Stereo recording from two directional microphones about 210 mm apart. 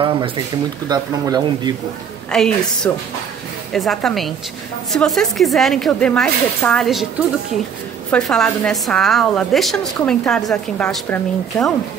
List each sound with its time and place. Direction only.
0.8 s speech: 20° right (ahead or behind)
2.3 s a woman's voice: 5° left (ahead or behind)
8.1 s a woman's voice: centre (ahead or behind)